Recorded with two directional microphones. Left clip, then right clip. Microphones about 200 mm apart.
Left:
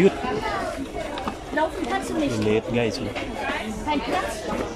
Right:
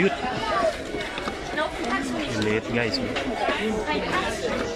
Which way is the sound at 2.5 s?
15° left (ahead or behind).